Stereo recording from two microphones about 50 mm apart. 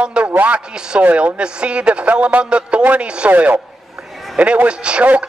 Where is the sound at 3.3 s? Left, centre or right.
Right.